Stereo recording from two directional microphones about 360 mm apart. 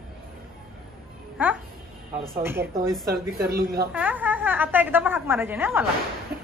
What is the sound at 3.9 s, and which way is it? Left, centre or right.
A woman's voice, centre.